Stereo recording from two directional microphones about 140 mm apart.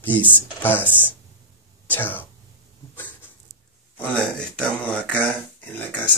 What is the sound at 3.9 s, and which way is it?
Speech, 10° left (ahead or behind).